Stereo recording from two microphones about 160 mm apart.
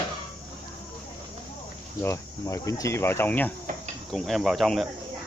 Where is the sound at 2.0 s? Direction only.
20° left (ahead or behind); by 4.8 s centre (ahead or behind).